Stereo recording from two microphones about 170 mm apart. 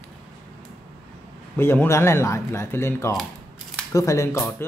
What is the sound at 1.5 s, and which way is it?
Speech, 15° left (ahead or behind).